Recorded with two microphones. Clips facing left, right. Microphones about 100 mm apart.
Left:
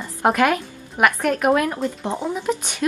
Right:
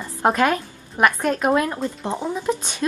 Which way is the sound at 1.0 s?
20° right (ahead or behind).